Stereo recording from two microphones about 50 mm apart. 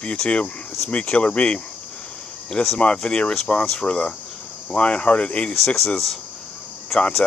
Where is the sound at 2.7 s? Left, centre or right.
Left.